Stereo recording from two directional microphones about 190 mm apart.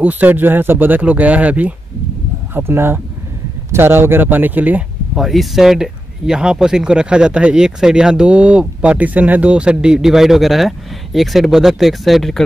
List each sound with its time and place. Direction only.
0.0 s speech: 10° right (ahead or behind)